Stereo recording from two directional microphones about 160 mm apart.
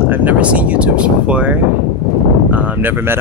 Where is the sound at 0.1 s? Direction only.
10° right (ahead or behind).